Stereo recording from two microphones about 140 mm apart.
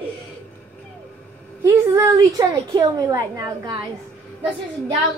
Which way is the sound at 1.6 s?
20° right (ahead or behind).